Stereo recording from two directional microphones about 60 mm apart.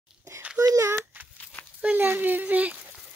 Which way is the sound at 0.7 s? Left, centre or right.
Right.